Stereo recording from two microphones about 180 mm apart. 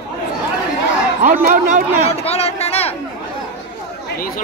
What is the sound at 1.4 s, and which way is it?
Speech, 45° right (ahead or behind).